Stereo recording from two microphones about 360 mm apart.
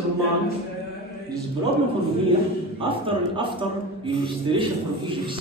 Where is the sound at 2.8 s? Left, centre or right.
Centre.